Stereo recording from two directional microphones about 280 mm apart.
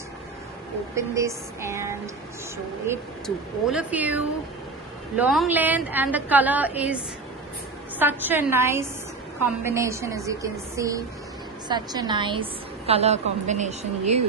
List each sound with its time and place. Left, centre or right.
0.9 s a woman's voice: centre
3.3 s a woman's voice: centre
8.0 s a woman's voice: centre; by 14.2 s right